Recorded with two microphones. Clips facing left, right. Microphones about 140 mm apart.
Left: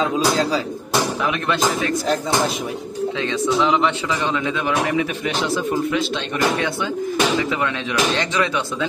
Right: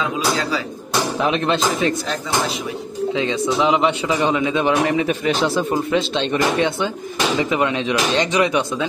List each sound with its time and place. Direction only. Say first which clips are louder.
0.0 s speech: left 3 dB; 35° left (ahead or behind)
1.2 s speech: right 2 dB; 25° right (ahead or behind)
3.2 s speech: right 1 dB; 15° right (ahead or behind)